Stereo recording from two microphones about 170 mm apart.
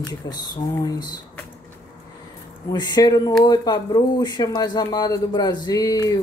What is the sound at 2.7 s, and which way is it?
Speech, 25° left (ahead or behind).